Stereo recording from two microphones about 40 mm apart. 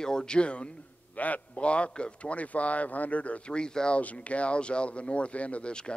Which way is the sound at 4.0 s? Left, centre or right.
Left.